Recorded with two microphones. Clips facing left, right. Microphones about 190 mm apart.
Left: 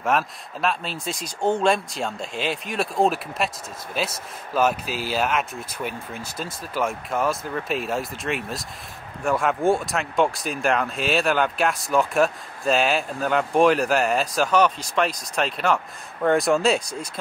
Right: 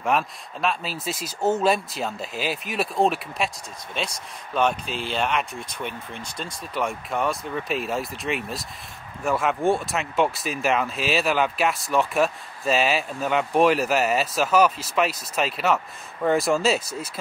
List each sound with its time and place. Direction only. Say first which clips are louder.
0.0 s speech: left 1 dB; centre (ahead or behind)